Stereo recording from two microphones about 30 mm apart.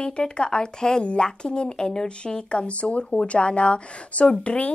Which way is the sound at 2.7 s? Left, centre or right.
Left.